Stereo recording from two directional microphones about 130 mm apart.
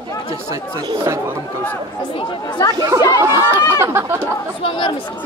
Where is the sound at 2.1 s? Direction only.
35° left (ahead or behind).